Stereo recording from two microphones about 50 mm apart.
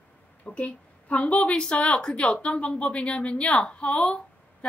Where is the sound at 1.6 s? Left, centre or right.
Centre.